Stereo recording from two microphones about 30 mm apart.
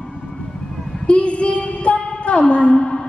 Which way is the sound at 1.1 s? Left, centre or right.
Left.